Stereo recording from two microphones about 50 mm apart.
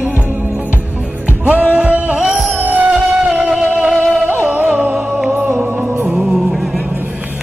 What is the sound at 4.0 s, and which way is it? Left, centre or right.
Music, right.